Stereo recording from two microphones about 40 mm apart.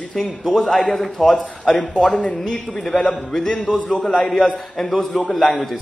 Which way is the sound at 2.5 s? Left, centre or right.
Centre.